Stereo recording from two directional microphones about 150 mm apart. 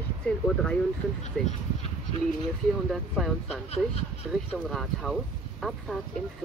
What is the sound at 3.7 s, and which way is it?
Speech, 45° left (ahead or behind).